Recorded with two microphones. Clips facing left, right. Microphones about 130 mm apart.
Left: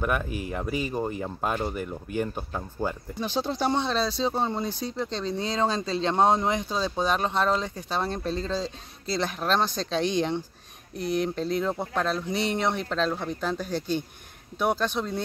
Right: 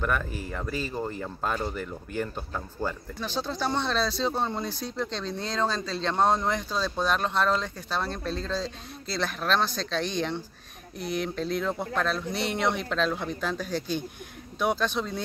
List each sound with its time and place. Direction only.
0.0 s speech: 15° left (ahead or behind)
11.6 s speech: 15° left (ahead or behind)
12.3 s speech: 5° right (ahead or behind)
12.6 s speech: 5° left (ahead or behind)